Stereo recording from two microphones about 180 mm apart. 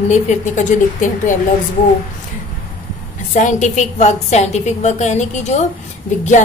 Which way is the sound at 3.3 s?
45° left (ahead or behind).